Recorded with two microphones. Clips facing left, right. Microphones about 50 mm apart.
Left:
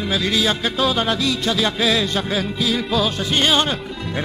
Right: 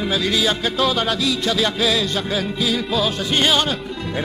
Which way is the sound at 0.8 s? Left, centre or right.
Centre.